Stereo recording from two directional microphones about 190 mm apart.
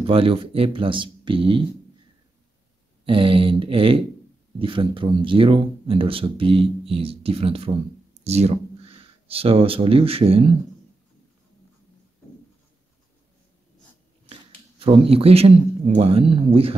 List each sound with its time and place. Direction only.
0.0 s speech: 30° right (ahead or behind)
3.1 s speech: 30° right (ahead or behind)
14.8 s speech: 30° right (ahead or behind)